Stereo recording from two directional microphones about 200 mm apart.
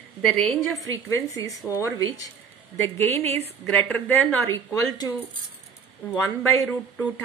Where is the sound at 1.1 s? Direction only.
15° left (ahead or behind).